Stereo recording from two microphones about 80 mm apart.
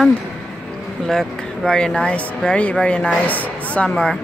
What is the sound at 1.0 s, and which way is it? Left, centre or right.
Speech, centre.